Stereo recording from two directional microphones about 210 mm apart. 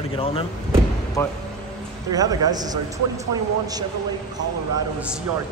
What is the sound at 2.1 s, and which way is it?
Speech, 15° right (ahead or behind).